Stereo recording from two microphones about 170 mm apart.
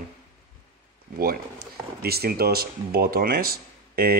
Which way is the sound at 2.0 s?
65° right (ahead or behind).